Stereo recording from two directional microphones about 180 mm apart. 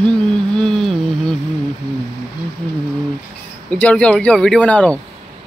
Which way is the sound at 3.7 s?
5° left (ahead or behind).